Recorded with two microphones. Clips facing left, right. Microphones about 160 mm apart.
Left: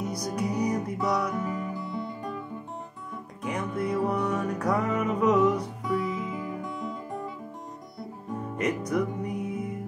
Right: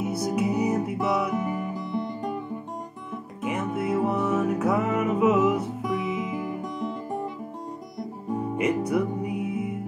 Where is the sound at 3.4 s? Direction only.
5° right (ahead or behind).